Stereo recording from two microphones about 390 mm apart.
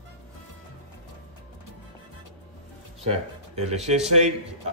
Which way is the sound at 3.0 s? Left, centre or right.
Centre.